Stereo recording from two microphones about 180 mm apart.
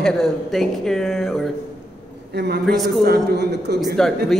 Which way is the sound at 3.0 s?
60° right (ahead or behind).